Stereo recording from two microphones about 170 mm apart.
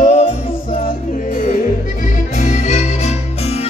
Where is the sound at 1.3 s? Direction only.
50° left (ahead or behind).